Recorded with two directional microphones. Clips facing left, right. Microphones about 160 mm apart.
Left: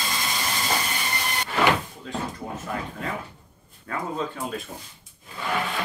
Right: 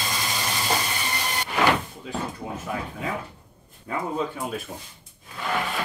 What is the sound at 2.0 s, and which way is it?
Speech, 5° right (ahead or behind).